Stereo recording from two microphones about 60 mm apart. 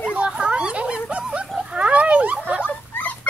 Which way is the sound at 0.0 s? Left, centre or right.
Centre.